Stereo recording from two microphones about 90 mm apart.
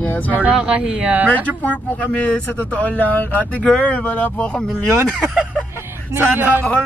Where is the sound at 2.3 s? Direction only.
15° left (ahead or behind).